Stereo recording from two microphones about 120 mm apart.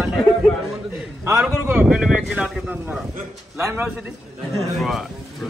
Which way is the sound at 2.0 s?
5° right (ahead or behind).